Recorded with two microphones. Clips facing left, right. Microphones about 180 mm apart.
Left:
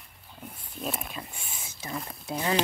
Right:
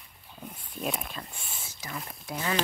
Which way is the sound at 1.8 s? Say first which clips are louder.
Left 4 dB; 25° left (ahead or behind).